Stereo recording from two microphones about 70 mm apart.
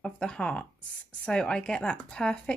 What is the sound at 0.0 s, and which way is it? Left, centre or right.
Speech, centre.